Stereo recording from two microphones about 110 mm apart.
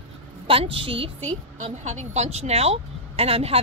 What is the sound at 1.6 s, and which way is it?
Speech, 90° right.